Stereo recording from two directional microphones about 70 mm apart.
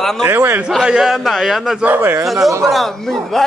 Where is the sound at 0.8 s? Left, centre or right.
Centre.